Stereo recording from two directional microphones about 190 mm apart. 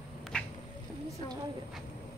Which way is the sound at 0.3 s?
5° left (ahead or behind).